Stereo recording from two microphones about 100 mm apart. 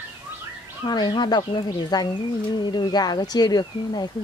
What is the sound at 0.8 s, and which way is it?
Speech, 45° left (ahead or behind).